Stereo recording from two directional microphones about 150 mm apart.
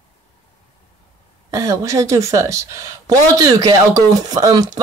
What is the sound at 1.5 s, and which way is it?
Speech, 20° right (ahead or behind).